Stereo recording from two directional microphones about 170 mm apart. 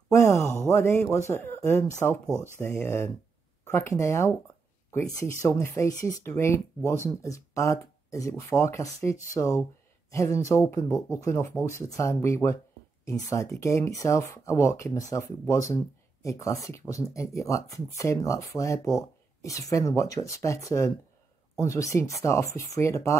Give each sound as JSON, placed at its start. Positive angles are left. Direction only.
{"t": 0.1, "sound": "a sound", "side_deg": 15}
{"t": 0.7, "sound": "speech", "side_deg": 15}
{"t": 2.2, "sound": "speech", "side_deg": -15}
{"t": 2.6, "sound": "speech", "side_deg": 15}
{"t": 5.4, "sound": "speech", "side_deg": 15}